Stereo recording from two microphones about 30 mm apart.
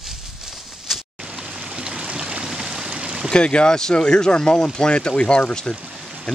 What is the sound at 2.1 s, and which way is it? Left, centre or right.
Stream, right.